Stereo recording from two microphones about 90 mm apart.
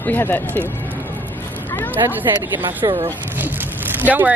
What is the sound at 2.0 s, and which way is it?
Speech, 20° right (ahead or behind).